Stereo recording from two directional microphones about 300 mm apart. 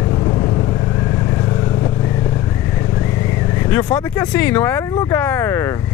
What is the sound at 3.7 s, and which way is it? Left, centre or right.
Speech, centre.